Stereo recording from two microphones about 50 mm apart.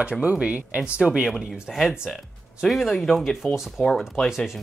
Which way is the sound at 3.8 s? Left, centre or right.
Centre.